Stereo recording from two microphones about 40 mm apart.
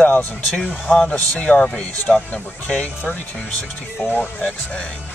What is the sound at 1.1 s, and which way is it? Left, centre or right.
Speech, left.